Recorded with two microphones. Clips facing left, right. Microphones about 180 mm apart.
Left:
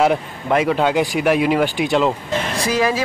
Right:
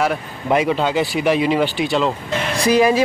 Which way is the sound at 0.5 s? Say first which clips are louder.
Even; centre (ahead or behind).